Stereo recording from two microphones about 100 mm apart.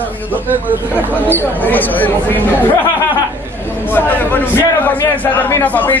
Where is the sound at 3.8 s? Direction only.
20° left (ahead or behind).